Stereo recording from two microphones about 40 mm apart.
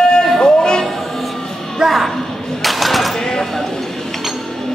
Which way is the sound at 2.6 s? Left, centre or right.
Centre.